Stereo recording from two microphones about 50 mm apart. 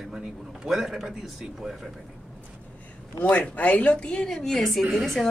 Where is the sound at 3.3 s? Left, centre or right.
Left.